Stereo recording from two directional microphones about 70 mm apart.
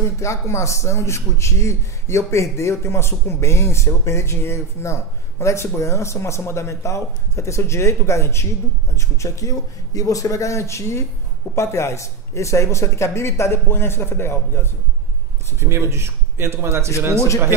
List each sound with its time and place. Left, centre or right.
0.0 s a man's voice: left
15.7 s a man's voice: right